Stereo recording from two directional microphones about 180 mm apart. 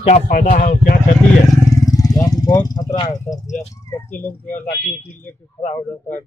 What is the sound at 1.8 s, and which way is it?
Vehicle, 20° left (ahead or behind).